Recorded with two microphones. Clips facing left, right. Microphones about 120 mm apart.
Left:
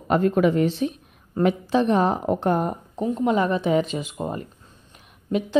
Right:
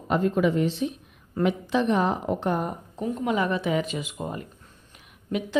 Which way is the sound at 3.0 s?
30° left (ahead or behind).